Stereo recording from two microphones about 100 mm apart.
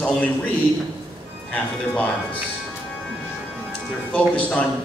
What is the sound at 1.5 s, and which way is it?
Speech, 15° left (ahead or behind).